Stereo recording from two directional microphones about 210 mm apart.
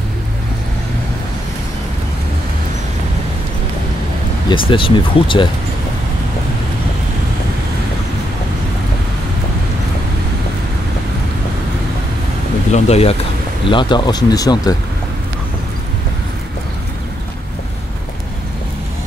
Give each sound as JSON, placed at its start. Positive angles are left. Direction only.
{"t": 4.5, "sound": "speech", "side_deg": 25}
{"t": 12.7, "sound": "speech", "side_deg": 30}